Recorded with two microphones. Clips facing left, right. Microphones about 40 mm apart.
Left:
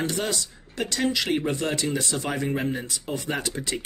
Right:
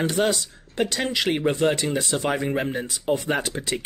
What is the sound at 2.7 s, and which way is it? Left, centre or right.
Speech, centre.